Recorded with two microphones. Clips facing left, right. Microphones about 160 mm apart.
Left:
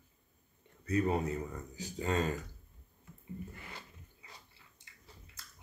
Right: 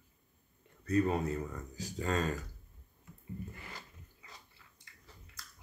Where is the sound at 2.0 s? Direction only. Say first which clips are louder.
Left 1 dB; 25° left (ahead or behind).